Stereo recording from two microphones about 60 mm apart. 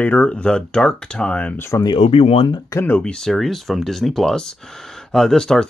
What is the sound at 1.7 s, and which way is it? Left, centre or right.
Speech, left.